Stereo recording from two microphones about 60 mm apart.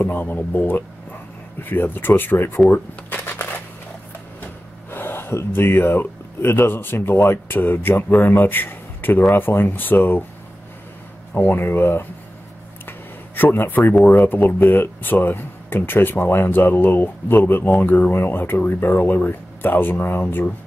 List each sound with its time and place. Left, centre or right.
0.0 s speech: left
2.7 s shuffling cards: left
4.9 s speech: left
11.3 s speech: left
13.4 s speech: left